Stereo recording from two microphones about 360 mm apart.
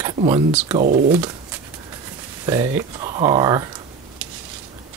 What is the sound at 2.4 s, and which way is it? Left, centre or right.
Speech, centre.